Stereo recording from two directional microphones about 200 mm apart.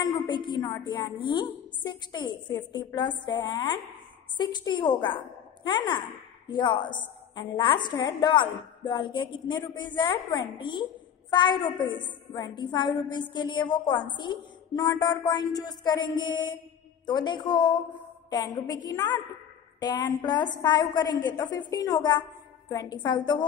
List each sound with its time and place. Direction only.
0.0 s a woman's voice: 20° left (ahead or behind)